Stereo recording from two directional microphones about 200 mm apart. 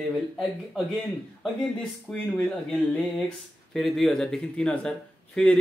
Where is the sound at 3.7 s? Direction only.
Centre (ahead or behind).